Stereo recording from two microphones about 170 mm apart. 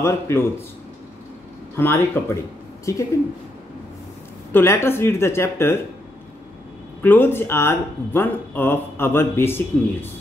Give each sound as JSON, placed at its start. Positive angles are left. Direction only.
{"t": 0.0, "sound": "speech", "side_deg": 15}
{"t": 1.8, "sound": "speech", "side_deg": 15}
{"t": 4.5, "sound": "speech", "side_deg": 15}
{"t": 7.0, "sound": "speech", "side_deg": 10}